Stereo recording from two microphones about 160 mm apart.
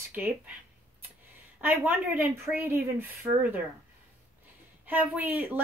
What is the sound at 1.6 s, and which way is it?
A woman's voice, 15° right (ahead or behind).